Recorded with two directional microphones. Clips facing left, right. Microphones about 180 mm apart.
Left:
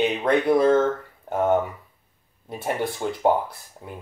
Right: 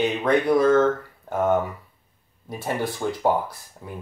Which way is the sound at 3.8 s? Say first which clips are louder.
Even; 20° left (ahead or behind).